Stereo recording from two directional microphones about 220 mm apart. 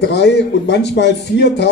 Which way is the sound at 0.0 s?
50° left (ahead or behind).